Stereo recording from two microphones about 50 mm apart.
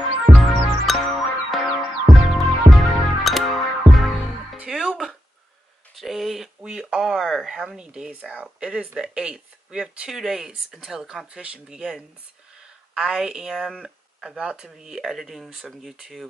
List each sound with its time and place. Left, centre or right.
0.3 s music: centre
4.6 s music: centre
5.9 s a sound: centre
7.2 s speech: centre
13.0 s speech: centre